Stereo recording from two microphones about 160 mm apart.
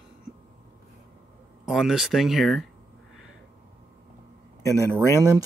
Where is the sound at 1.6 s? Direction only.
Centre (ahead or behind).